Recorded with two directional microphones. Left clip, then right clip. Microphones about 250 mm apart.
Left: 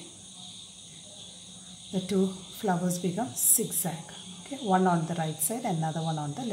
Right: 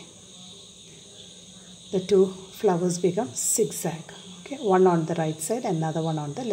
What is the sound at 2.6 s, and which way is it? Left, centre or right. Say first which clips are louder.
Speech: right 7 dB; right.